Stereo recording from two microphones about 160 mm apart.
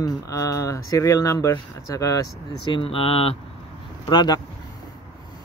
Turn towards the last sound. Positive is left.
turn(degrees=25)  # may be behind; listen again after turning